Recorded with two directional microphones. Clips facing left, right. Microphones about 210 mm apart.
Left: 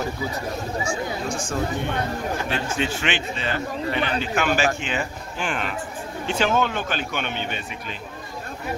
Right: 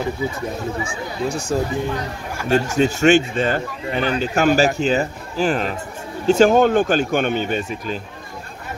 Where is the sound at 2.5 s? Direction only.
40° right (ahead or behind).